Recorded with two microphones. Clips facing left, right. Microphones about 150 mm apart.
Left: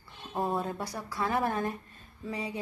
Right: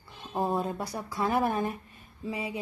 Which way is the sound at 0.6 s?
20° right (ahead or behind).